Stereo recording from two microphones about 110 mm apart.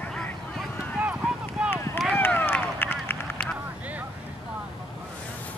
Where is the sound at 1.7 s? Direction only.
25° left (ahead or behind).